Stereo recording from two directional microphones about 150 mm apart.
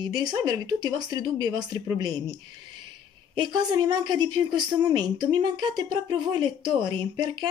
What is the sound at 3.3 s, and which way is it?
A woman's voice, 30° right (ahead or behind).